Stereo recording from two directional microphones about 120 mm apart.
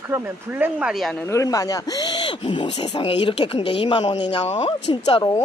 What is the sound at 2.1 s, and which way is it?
Speech, 45° left (ahead or behind).